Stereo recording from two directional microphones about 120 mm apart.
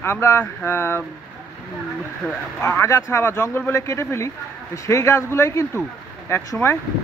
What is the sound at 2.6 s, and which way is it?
Speech, 20° left (ahead or behind).